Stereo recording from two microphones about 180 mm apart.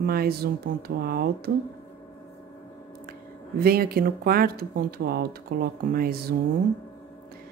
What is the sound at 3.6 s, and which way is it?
Speech, 55° right (ahead or behind).